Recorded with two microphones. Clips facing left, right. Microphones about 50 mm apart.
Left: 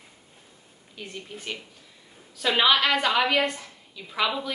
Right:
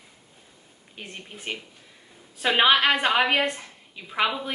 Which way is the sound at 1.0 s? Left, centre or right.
Right.